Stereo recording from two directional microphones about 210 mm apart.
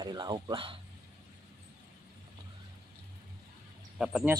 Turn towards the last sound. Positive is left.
turn(degrees=-5)  # may be behind; listen again after turning